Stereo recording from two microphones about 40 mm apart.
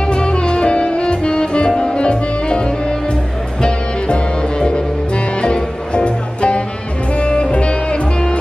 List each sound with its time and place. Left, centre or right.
0.1 s music: left